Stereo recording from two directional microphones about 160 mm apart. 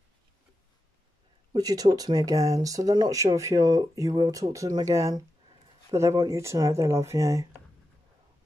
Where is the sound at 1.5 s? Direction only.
25° right (ahead or behind).